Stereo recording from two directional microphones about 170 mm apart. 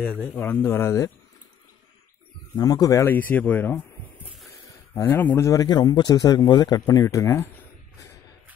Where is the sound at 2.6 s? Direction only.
20° left (ahead or behind).